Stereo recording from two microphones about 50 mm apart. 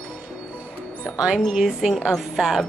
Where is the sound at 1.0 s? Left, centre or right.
Right.